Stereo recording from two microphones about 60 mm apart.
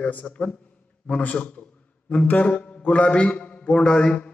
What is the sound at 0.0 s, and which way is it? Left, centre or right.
A man's voice, left.